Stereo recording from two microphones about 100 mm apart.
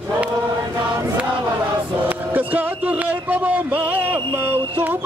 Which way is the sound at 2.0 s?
15° right (ahead or behind).